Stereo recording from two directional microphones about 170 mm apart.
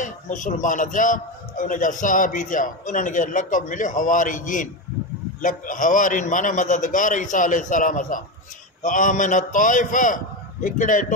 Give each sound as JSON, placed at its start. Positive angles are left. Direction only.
{"t": 0.0, "sound": "a man's voice", "side_deg": 45}